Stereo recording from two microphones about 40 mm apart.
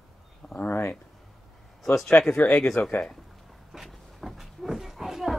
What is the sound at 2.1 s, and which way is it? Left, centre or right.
Speech, left.